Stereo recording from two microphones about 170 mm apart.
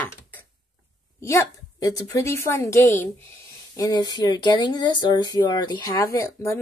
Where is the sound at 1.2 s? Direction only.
15° left (ahead or behind).